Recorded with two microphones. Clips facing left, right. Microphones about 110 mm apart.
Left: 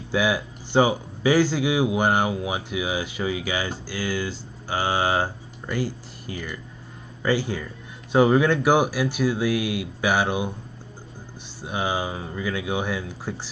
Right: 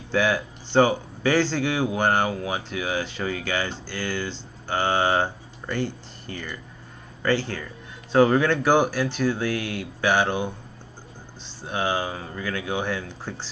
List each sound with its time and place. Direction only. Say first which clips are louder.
0.1 s a man's voice: even; 10° left (ahead or behind)
11.6 s a man's voice: even; 10° left (ahead or behind)